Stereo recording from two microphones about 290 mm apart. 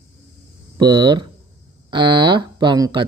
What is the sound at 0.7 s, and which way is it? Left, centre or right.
Speech, centre.